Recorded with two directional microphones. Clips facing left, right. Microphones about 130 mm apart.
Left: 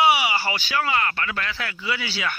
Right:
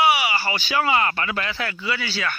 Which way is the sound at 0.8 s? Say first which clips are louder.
Right 4 dB; 15° right (ahead or behind).